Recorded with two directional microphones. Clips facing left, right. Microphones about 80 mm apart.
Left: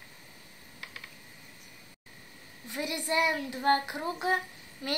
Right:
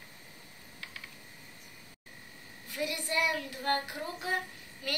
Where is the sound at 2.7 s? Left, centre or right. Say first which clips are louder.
Left 3 dB; left.